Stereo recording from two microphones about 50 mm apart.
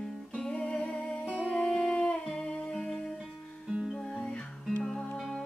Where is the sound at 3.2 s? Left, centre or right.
Centre.